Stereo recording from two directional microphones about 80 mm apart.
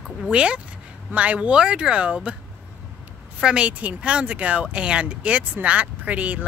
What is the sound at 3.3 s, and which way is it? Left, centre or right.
Speech, centre.